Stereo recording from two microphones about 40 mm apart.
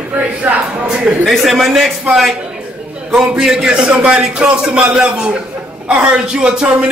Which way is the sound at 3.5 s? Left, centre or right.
Right.